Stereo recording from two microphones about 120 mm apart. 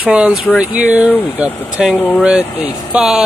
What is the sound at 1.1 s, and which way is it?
Speech, 15° left (ahead or behind).